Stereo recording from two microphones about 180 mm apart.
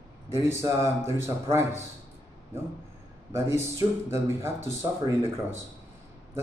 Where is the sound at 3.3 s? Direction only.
15° right (ahead or behind).